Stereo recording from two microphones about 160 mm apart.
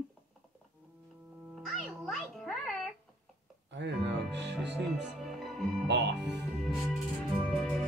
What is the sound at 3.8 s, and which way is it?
Speech, 90° right.